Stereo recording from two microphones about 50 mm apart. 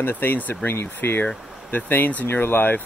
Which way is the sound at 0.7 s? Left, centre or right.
Left.